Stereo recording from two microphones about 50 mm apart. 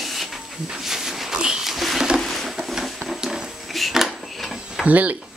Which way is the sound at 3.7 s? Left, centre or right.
Centre.